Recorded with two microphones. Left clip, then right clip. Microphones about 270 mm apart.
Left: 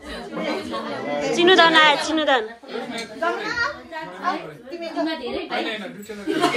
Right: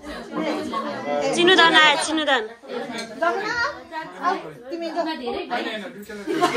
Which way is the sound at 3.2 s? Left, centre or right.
Right.